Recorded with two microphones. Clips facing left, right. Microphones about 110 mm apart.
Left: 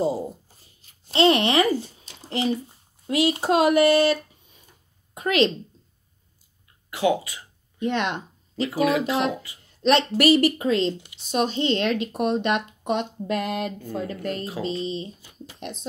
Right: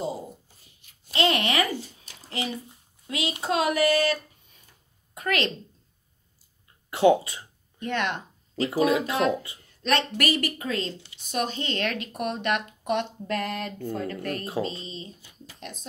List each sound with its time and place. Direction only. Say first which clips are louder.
1.0 s a child's voice: left 6 dB; 30° left (ahead or behind)
5.1 s a woman's voice: left 6 dB; 20° left (ahead or behind)
6.9 s speech: right 3 dB; 25° right (ahead or behind)
7.8 s speech: left 3 dB; 20° left (ahead or behind)
8.6 s speech: left 1 dB; 25° right (ahead or behind)
9.0 s speech: left 1 dB; 25° left (ahead or behind)